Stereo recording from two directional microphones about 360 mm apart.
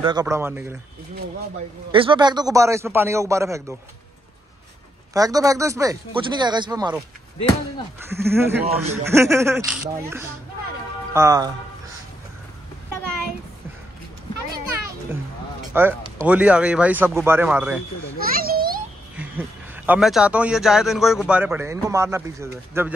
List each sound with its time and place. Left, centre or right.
0.0 s a man's voice: centre
1.9 s a man's voice: centre
5.1 s a man's voice: centre
8.1 s a man's voice: centre
15.7 s speech: centre
18.2 s a sound: right
19.1 s speech: centre